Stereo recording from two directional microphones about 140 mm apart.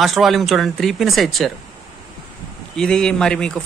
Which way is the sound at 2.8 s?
5° left (ahead or behind).